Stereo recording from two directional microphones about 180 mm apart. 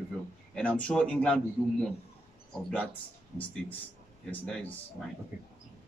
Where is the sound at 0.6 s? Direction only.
5° left (ahead or behind).